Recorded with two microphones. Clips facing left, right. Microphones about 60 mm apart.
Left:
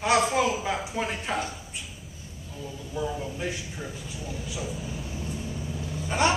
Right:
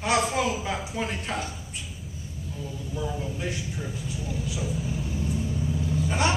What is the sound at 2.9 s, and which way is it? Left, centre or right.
A man's voice, centre.